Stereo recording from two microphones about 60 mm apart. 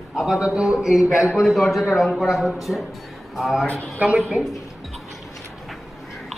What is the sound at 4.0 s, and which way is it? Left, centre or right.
Speech, right.